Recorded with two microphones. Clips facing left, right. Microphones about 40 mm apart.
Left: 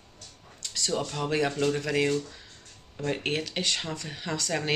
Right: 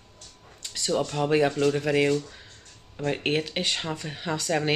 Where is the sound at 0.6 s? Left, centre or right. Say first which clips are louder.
Right 3 dB; centre.